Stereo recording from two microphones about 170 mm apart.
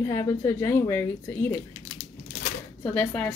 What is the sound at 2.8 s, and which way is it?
Speech, 5° left (ahead or behind).